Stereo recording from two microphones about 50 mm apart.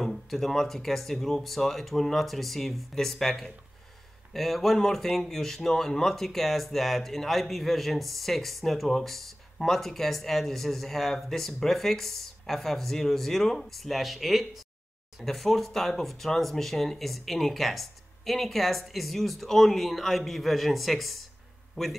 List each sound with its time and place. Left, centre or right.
0.0 s speech: centre